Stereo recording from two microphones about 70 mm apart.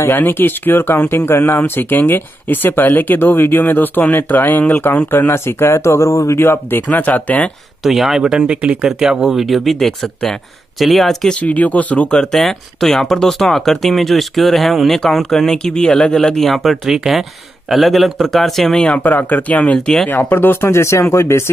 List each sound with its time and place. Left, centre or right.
0.2 s speech: left
7.0 s speech: left
7.8 s speech: centre
11.4 s speech: left
12.1 s speech: centre
18.9 s speech: left